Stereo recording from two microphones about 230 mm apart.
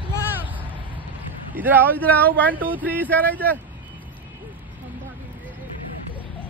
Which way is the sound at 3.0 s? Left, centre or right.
Centre.